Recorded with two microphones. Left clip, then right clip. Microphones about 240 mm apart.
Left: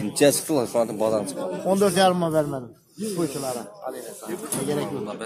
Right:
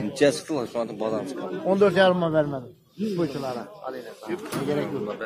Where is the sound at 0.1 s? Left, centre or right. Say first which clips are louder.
Left 3 dB; left.